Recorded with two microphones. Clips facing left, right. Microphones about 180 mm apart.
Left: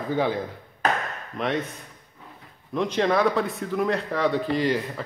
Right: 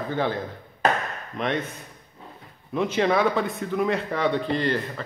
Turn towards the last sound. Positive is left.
turn(degrees=10)  # may be behind; listen again after turning